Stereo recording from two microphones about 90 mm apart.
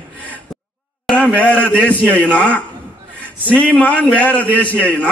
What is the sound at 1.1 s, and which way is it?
A man's voice, 15° left (ahead or behind).